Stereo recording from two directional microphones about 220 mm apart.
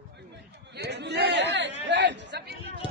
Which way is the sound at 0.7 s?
50° right (ahead or behind).